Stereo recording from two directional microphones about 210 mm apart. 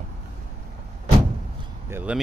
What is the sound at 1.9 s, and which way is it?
Speech, 10° right (ahead or behind).